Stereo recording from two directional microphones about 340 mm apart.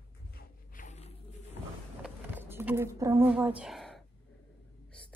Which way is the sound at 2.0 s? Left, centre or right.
Centre.